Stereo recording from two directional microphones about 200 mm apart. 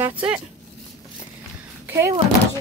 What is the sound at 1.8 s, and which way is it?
Door, 15° right (ahead or behind).